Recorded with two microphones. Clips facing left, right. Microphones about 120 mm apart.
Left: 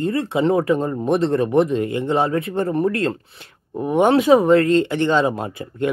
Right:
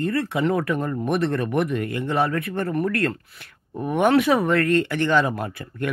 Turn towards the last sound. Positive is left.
turn(degrees=25)  # may be behind; listen again after turning